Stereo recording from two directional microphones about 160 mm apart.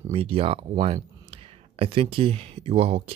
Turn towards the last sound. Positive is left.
turn(degrees=-40)  # may be behind; listen again after turning